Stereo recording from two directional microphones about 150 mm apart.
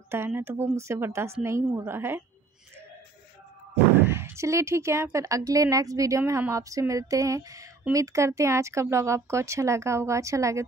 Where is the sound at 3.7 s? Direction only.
15° right (ahead or behind).